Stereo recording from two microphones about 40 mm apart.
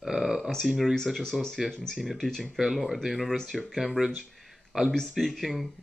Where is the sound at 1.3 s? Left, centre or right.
Centre.